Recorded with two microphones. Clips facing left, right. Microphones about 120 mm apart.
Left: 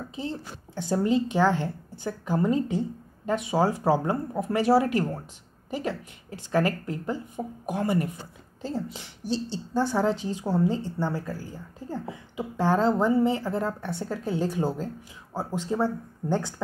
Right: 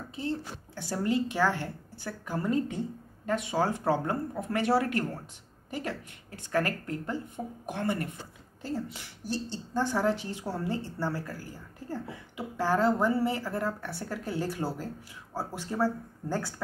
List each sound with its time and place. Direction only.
0.1 s a woman's voice: 20° left (ahead or behind)